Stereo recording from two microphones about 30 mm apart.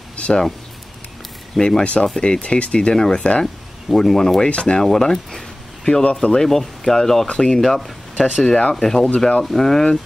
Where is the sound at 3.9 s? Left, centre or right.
Centre.